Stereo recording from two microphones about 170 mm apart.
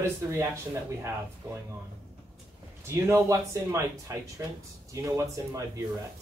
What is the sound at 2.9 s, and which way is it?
A man's voice, 15° right (ahead or behind).